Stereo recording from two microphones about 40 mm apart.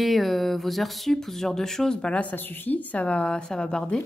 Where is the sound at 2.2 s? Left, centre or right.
Left.